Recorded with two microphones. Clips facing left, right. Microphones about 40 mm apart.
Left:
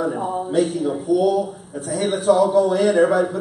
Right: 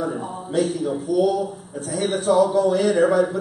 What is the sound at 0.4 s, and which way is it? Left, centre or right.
Speech, centre.